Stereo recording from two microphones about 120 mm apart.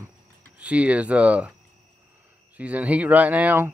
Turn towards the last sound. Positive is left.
turn(degrees=-15)  # may be behind; listen again after turning